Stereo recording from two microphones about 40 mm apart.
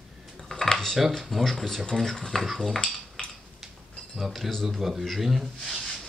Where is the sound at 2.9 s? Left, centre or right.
Centre.